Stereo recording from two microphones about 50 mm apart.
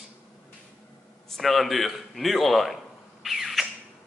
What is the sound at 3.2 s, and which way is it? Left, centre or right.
Squawk, centre.